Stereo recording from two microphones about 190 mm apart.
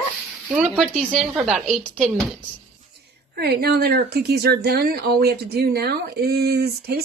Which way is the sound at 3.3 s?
55° right (ahead or behind).